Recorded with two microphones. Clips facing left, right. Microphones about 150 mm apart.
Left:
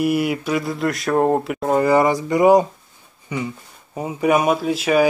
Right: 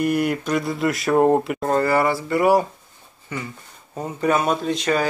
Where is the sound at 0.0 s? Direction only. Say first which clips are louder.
Left 1 dB; 5° left (ahead or behind).